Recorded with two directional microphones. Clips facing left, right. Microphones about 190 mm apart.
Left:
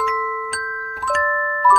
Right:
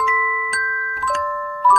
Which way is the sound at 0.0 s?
Centre (ahead or behind).